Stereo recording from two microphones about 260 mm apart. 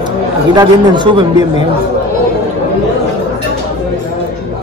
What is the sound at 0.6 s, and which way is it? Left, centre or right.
Speech, centre.